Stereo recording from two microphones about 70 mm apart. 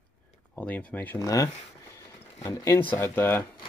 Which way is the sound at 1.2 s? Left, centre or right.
Left.